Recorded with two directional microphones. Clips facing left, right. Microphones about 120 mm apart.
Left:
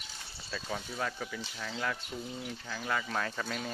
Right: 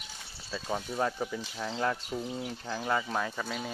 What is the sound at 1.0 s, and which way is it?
Speech, 25° right (ahead or behind).